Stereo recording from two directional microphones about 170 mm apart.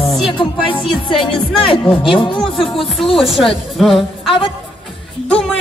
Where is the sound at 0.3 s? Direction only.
30° left (ahead or behind).